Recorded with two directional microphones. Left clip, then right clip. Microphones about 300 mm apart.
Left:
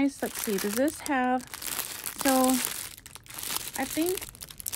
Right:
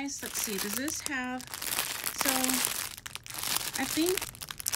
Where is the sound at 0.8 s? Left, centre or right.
Centre.